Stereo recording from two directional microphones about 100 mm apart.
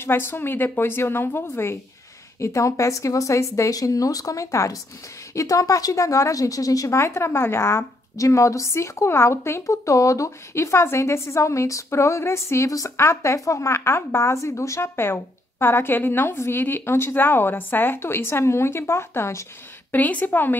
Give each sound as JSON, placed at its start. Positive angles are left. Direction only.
{"t": 0.0, "sound": "a woman's voice", "side_deg": 25}
{"t": 19.9, "sound": "a woman's voice", "side_deg": 15}